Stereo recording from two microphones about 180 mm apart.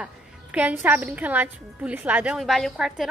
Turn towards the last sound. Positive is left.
turn(degrees=0)  # may be behind; listen again after turning